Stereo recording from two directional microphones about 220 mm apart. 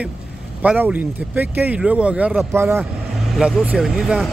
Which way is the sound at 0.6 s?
5° right (ahead or behind).